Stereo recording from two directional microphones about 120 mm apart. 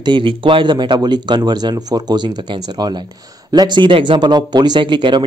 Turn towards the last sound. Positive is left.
turn(degrees=-40)  # may be behind; listen again after turning